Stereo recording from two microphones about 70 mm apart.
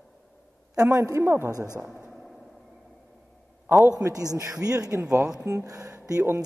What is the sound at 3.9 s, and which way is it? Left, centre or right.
A woman's voice, right.